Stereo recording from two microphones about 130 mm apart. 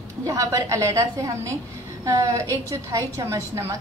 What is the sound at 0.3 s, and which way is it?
A woman's voice, 25° right (ahead or behind).